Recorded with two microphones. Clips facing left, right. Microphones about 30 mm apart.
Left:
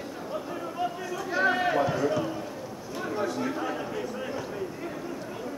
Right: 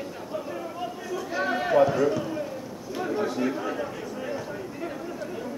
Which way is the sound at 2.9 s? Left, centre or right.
Centre.